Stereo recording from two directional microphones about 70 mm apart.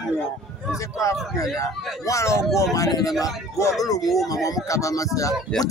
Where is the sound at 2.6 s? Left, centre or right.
Left.